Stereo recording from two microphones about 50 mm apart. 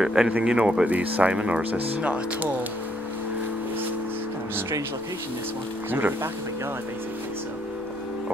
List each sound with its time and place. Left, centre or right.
0.0 s speech: centre
0.3 s speech: right
0.8 s speech: right
5.9 s speech: right